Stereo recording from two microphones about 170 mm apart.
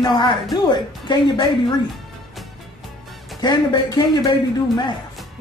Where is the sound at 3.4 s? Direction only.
25° left (ahead or behind).